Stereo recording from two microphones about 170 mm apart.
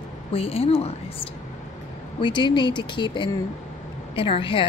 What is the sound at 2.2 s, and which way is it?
A woman's voice, 25° left (ahead or behind).